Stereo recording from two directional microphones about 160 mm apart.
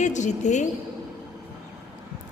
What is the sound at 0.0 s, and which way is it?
Speech, 50° left (ahead or behind).